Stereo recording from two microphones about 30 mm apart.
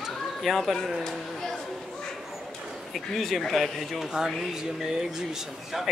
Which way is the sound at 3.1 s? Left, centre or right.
Centre.